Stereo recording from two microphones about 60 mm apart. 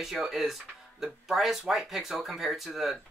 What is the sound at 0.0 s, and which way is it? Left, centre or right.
Speech, centre.